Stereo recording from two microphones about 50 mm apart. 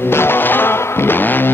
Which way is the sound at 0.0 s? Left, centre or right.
Left.